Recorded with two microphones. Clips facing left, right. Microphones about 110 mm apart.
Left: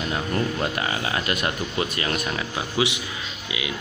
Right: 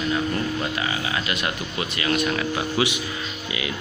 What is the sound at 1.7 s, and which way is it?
Speech, 30° left (ahead or behind).